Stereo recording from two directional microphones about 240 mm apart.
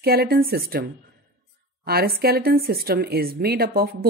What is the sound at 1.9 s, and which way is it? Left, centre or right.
Speech, right.